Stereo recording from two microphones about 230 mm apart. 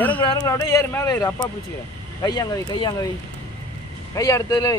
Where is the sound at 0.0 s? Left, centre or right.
Centre.